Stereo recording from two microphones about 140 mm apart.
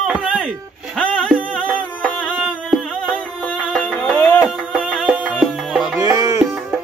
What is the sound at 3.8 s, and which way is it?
Music, 10° left (ahead or behind).